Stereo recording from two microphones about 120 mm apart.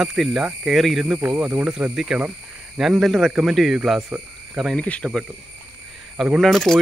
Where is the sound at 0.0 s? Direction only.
5° right (ahead or behind).